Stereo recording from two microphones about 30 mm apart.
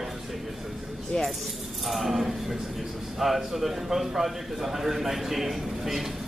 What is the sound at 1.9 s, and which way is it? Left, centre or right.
A man's voice, centre.